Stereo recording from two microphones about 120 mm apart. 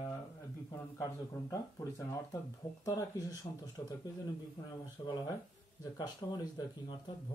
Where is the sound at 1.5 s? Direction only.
25° left (ahead or behind).